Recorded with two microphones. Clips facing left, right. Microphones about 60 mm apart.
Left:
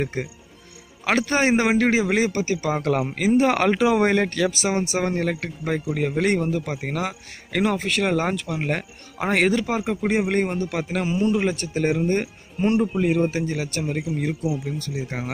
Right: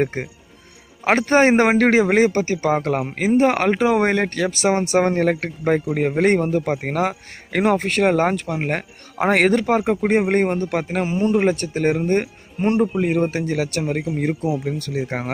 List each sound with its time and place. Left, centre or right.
0.0 s a man's voice: right